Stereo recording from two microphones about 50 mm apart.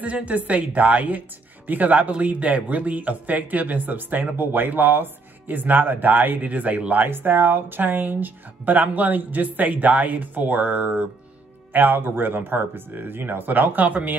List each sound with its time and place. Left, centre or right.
0.0 s speech: right
11.7 s speech: right